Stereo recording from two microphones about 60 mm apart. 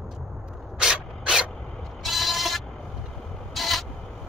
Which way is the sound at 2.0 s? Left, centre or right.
Centre.